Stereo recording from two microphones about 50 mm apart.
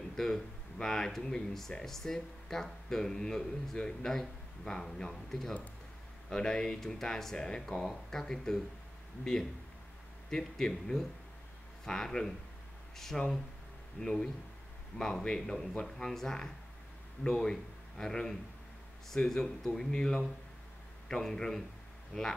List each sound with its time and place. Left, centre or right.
0.1 s speech: centre
19.9 s speech: centre